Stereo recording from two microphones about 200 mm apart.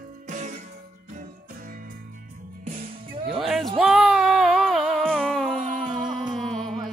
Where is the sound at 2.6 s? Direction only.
40° right (ahead or behind).